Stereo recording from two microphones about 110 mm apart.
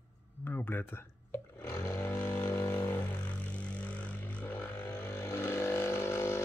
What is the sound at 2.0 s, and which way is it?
Vehicle, 15° left (ahead or behind).